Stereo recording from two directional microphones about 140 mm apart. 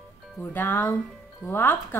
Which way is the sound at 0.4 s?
15° left (ahead or behind).